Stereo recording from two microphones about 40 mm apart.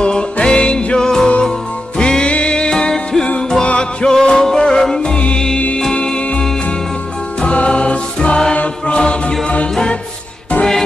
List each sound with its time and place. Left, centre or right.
0.0 s music: left